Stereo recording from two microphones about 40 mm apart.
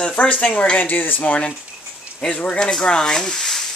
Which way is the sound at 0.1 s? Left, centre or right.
Left.